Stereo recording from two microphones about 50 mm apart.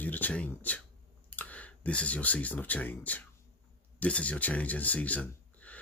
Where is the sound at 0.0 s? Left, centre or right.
Left.